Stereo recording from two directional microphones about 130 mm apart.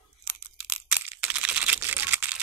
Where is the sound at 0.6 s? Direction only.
10° right (ahead or behind).